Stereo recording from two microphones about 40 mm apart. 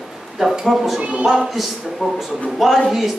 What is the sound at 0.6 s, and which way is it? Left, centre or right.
Speech, centre.